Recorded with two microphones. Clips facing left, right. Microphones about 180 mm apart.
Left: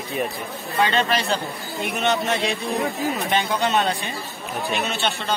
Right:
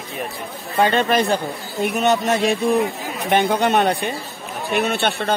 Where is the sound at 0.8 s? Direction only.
50° right (ahead or behind).